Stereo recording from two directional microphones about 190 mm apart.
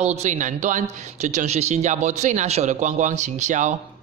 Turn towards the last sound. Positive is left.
turn(degrees=-40)  # may be behind; listen again after turning